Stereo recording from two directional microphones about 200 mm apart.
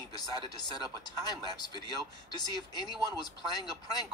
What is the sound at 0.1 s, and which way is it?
Speech, 20° left (ahead or behind).